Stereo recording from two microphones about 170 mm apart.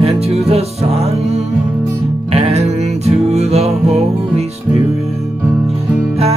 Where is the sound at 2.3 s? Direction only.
40° right (ahead or behind).